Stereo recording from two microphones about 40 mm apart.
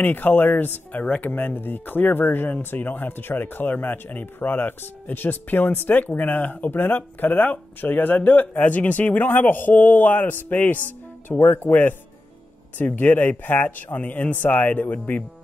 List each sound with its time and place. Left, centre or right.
0.0 s speech: left
0.9 s speech: left
1.3 s speech: left
12.7 s speech: left